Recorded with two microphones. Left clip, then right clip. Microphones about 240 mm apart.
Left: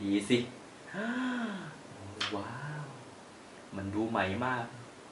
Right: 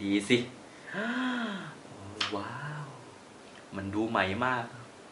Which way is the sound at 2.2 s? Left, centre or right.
Centre.